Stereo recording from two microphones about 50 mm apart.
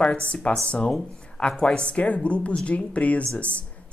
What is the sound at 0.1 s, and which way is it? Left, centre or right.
A woman's voice, left.